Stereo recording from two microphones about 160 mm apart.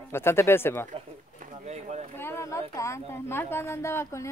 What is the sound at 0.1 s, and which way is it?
Speech, 15° left (ahead or behind).